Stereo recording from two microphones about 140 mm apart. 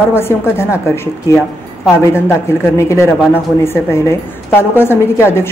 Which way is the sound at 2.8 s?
20° left (ahead or behind).